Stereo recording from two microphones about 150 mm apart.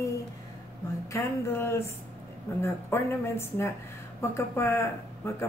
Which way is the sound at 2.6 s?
15° left (ahead or behind).